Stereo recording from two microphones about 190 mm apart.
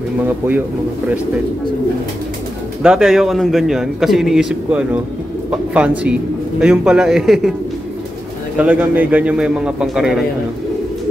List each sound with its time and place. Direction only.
2.8 s a man's voice: 5° right (ahead or behind)
8.5 s a man's voice: 10° right (ahead or behind)